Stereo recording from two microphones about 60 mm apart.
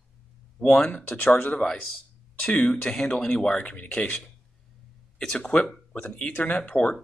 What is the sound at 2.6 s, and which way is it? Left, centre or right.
Speech, centre.